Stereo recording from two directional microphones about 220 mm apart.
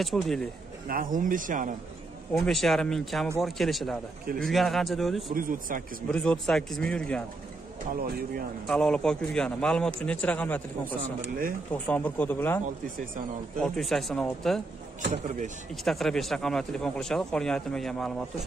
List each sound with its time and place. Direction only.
0.0 s speech: centre (ahead or behind)
0.8 s speech: 40° right (ahead or behind)
2.3 s speech: centre (ahead or behind)
5.3 s speech: 40° right (ahead or behind)
6.1 s speech: 5° left (ahead or behind)
7.9 s speech: 40° right (ahead or behind)
8.6 s speech: 5° left (ahead or behind)
11.0 s speech: 40° right (ahead or behind)
11.9 s speech: 10° left (ahead or behind)
15.0 s speech: 35° right (ahead or behind)
15.7 s speech: centre (ahead or behind)